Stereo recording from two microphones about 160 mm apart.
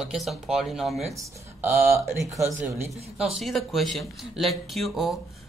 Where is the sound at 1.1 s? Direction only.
15° right (ahead or behind).